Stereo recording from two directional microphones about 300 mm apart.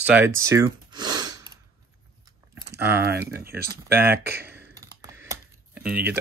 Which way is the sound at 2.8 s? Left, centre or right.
Right.